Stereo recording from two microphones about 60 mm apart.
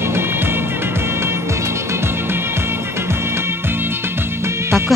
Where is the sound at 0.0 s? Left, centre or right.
Right.